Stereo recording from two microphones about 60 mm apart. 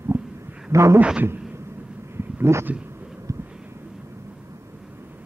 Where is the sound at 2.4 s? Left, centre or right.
Right.